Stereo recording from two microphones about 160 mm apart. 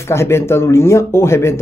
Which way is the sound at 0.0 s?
15° left (ahead or behind).